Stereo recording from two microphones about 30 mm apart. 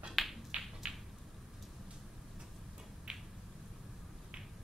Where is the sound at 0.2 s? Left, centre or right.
Centre.